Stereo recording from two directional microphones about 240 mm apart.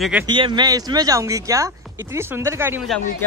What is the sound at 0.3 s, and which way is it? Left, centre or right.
Speech, centre.